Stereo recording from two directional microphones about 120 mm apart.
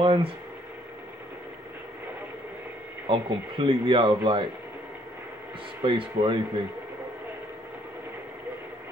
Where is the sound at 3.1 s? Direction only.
45° right (ahead or behind).